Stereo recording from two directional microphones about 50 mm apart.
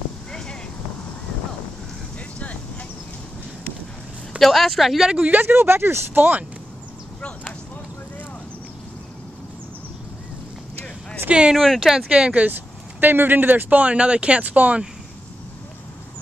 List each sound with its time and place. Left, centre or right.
2.1 s vehicle: left
4.4 s speech: centre
5.2 s speech: right
5.5 s speech: right
11.2 s speech: centre
11.5 s speech: centre
12.1 s speech: right
12.4 s speech: right
13.7 s speech: right